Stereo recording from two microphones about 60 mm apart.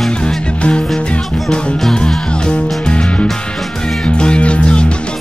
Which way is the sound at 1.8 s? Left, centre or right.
Centre.